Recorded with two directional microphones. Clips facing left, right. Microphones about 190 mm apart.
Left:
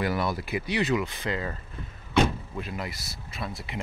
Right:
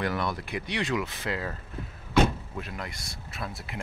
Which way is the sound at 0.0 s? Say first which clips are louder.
Left 2 dB; 5° left (ahead or behind).